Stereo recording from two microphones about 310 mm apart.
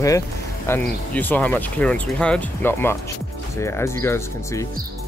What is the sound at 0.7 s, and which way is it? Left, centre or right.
Speech, centre.